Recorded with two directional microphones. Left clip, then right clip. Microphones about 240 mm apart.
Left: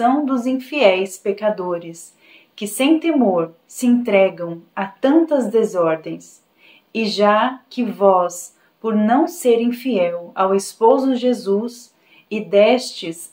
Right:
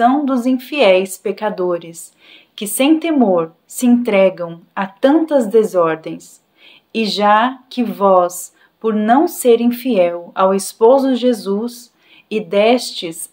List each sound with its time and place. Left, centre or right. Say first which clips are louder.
0.0 s a woman's voice: right 3 dB; right